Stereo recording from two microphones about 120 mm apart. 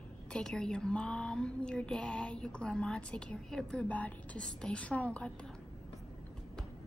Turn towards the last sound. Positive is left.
turn(degrees=10)  # may be behind; listen again after turning